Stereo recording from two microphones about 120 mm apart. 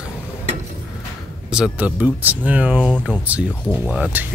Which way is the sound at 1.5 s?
10° right (ahead or behind).